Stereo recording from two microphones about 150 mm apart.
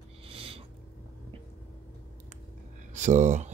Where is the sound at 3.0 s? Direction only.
50° right (ahead or behind).